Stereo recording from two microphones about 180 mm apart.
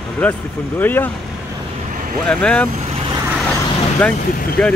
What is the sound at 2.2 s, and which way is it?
Speech, 5° left (ahead or behind).